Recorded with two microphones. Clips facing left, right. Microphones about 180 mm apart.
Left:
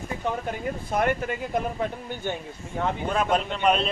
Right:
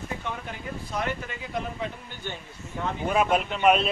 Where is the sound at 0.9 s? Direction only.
55° left (ahead or behind).